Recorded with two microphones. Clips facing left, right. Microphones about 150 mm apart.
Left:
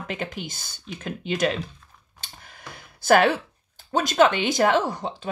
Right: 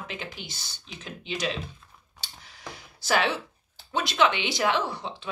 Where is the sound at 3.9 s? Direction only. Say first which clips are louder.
Left 5 dB; 45° left (ahead or behind).